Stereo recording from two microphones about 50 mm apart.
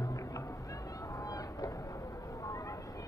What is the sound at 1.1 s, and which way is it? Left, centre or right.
Vehicle, left.